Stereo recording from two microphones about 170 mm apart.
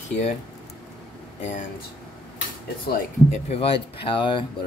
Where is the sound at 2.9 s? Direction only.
40° left (ahead or behind).